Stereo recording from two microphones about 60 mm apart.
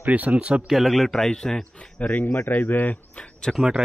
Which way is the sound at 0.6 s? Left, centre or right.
Centre.